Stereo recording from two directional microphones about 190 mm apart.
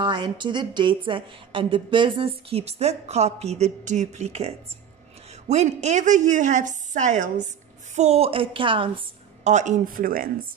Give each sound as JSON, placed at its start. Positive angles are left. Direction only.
{"t": 0.0, "sound": "a woman's voice", "side_deg": -25}